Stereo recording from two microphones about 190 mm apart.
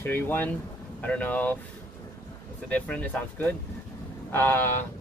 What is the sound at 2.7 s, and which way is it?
Speech, 5° left (ahead or behind).